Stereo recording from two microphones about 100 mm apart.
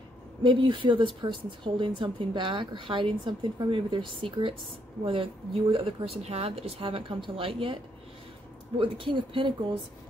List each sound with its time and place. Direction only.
0.4 s speech: 55° right (ahead or behind)